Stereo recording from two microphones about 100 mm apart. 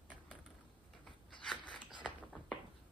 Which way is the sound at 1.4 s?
10° left (ahead or behind).